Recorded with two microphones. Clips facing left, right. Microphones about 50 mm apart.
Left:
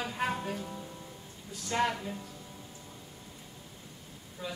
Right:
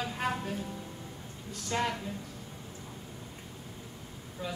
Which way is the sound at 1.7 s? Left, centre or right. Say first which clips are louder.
Left 2 dB; centre.